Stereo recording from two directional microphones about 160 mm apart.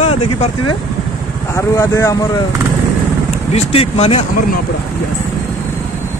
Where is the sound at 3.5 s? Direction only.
40° left (ahead or behind).